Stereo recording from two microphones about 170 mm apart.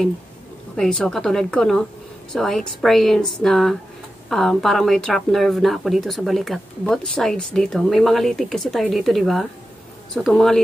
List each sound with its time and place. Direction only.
0.7 s speech: 5° left (ahead or behind)